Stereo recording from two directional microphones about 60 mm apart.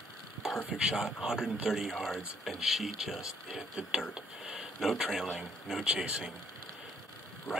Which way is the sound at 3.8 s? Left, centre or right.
Centre.